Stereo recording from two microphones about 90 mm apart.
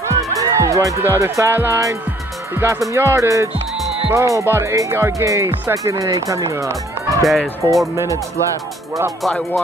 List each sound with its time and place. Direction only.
0.2 s music: 40° right (ahead or behind)
1.0 s speech: 30° right (ahead or behind)
7.2 s speech: centre (ahead or behind)
7.9 s speech: 35° right (ahead or behind)